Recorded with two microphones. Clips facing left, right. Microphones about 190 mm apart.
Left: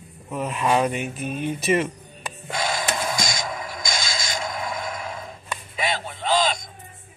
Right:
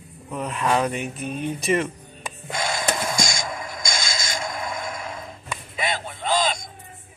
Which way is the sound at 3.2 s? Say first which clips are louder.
Left 1 dB; 25° right (ahead or behind).